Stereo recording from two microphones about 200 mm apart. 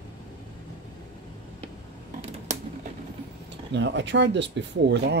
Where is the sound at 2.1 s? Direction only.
30° right (ahead or behind).